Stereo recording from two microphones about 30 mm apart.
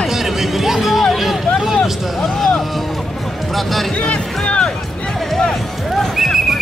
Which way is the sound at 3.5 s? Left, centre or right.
Centre.